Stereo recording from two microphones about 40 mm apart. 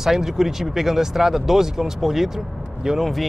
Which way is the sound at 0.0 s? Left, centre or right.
Centre.